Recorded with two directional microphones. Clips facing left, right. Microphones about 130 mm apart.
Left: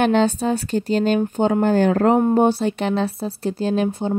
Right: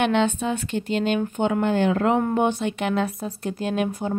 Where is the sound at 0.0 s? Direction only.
40° left (ahead or behind).